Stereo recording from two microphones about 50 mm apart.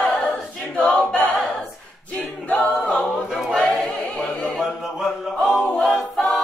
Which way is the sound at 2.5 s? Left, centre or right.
Left.